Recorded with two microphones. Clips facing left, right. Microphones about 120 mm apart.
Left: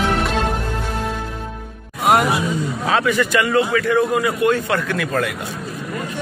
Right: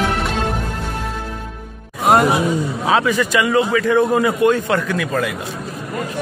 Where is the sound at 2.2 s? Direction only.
25° right (ahead or behind).